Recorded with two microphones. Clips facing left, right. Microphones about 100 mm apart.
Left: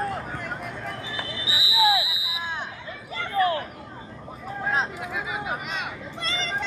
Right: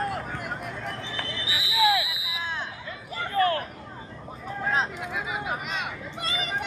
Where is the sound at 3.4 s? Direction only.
25° left (ahead or behind).